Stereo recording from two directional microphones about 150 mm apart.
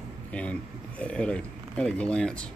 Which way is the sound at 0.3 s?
10° left (ahead or behind).